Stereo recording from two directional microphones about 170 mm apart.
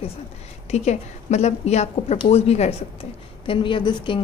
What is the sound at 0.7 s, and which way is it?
A woman's voice, 40° left (ahead or behind).